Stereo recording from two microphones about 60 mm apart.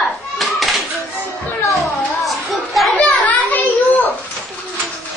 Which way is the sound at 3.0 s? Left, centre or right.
Left.